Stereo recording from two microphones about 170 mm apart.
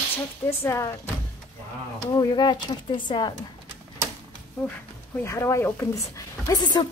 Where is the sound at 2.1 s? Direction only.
25° left (ahead or behind).